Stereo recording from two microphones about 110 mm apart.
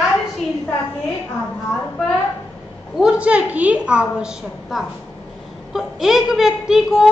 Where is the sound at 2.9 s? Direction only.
10° right (ahead or behind).